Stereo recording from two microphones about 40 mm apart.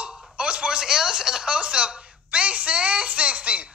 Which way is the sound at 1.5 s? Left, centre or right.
Right.